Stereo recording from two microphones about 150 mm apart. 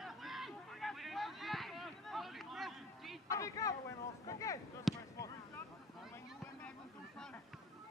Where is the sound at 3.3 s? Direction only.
20° left (ahead or behind).